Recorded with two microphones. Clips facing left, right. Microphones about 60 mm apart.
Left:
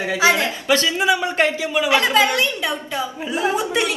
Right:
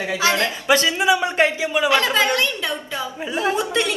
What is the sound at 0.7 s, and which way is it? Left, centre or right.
Speech, right.